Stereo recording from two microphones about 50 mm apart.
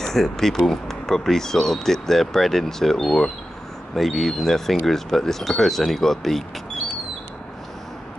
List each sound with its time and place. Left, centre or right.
0.0 s speech: centre